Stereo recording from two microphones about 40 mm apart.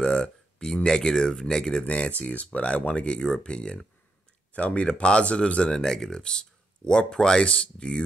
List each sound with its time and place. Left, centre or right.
0.0 s speech: centre
4.6 s speech: left
5.8 s speech: centre